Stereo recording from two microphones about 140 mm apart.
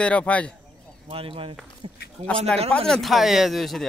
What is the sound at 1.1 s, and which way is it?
Speech, 40° right (ahead or behind).